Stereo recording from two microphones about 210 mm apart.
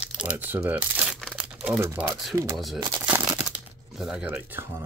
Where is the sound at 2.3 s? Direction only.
15° right (ahead or behind).